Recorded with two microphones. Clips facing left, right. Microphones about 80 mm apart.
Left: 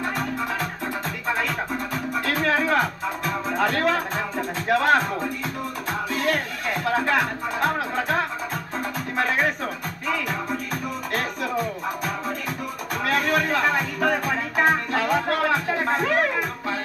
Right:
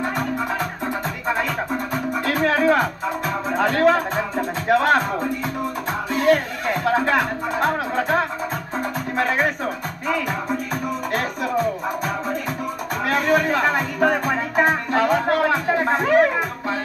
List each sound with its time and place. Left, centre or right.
2.2 s music: centre
3.5 s speech: centre
6.1 s speech: centre
7.2 s speech: centre
13.1 s music: centre